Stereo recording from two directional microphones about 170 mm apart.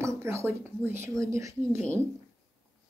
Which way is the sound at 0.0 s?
15° right (ahead or behind).